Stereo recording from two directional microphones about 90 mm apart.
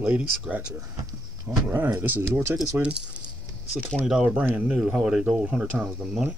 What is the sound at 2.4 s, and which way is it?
Speech, 35° right (ahead or behind).